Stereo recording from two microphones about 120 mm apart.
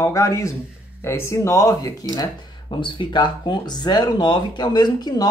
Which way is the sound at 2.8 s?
40° left (ahead or behind).